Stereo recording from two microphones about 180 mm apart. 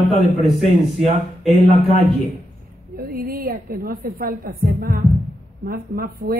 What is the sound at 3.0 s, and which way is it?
A woman's voice, 60° right (ahead or behind).